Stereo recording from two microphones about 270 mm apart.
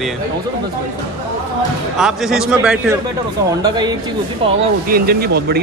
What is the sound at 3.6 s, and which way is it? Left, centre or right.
Speech, centre.